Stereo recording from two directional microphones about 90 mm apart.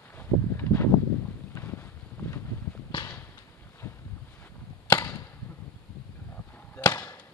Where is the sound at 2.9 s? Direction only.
50° left (ahead or behind).